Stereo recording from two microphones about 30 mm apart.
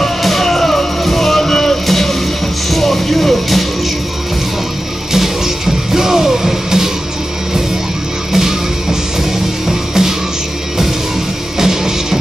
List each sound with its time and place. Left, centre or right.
0.2 s music: centre
5.9 s music: centre
8.3 s music: centre
9.7 s music: centre
11.5 s music: centre